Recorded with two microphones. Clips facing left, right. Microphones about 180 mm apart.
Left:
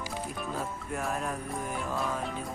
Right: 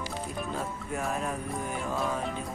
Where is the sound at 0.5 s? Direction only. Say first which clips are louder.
Right 1 dB; centre (ahead or behind).